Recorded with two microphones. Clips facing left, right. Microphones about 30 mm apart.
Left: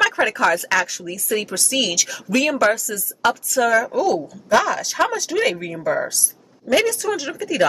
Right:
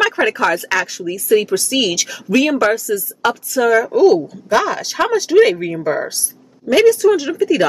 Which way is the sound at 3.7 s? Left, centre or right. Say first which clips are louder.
Right 6 dB; centre.